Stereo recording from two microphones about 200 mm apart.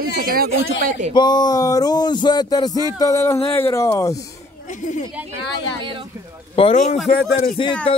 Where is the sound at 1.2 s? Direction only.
20° left (ahead or behind).